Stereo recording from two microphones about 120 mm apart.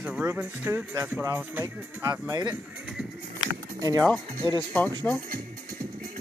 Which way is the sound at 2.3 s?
35° right (ahead or behind).